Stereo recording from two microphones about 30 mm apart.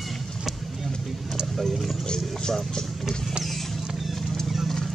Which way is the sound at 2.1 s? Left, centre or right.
Centre.